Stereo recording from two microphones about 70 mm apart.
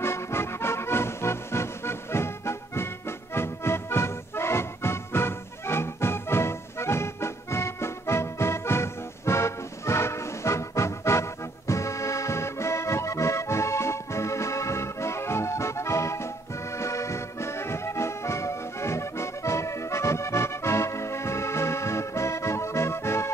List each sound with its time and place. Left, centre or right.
0.0 s music: left
16.7 s accordion: left